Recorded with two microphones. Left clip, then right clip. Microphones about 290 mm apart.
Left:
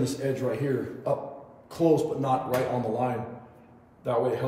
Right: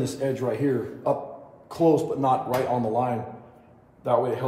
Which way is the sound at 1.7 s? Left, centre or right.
Right.